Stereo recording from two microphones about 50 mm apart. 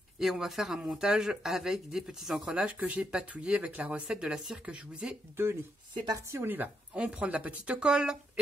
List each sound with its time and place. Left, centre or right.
0.2 s speech: centre
2.4 s speech: right
3.0 s speech: centre
4.1 s speech: centre
6.4 s a woman's voice: right
6.9 s speech: right
7.8 s speech: centre